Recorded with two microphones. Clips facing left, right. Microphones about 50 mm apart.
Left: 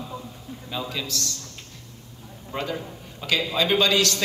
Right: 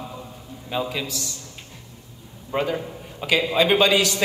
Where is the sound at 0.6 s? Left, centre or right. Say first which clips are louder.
Right 4 dB; centre.